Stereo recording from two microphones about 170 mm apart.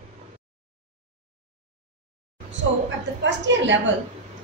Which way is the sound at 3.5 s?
90° right.